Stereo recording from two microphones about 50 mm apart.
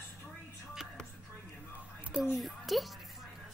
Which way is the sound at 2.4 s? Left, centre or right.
Centre.